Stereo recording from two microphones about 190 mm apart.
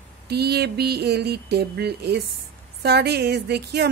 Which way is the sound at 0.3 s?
60° right (ahead or behind).